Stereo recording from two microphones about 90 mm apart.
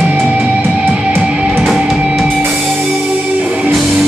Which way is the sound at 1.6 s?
Centre (ahead or behind).